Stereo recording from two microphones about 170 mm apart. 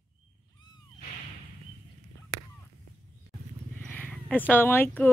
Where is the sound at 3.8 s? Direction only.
10° left (ahead or behind).